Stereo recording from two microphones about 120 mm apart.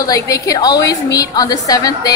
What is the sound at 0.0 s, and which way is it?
A woman's voice, 30° left (ahead or behind).